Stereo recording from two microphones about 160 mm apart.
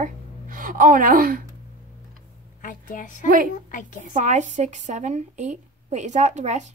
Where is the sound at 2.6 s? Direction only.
55° left (ahead or behind).